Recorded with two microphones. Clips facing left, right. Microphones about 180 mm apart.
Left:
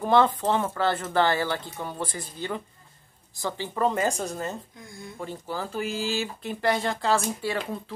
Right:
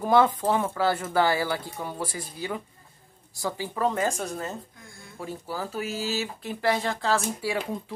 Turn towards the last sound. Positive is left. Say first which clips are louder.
# even
turn(degrees=-10)  # may be behind; listen again after turning